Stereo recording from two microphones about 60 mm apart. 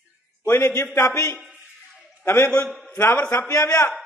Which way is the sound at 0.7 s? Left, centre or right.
Left.